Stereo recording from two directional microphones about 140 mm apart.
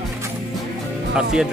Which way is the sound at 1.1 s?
5° right (ahead or behind).